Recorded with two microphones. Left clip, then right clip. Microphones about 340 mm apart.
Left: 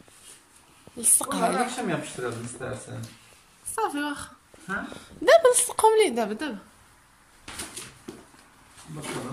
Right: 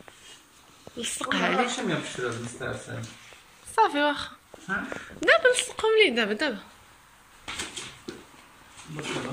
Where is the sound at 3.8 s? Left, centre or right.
Centre.